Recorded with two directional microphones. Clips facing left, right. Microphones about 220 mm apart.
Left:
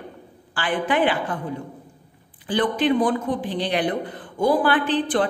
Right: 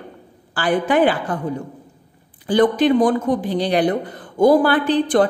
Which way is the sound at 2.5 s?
40° right (ahead or behind).